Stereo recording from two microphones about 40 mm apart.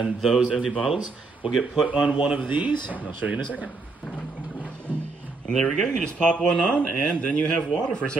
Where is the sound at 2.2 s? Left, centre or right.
Right.